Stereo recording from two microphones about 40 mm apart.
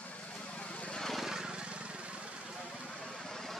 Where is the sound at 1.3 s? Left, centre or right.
Centre.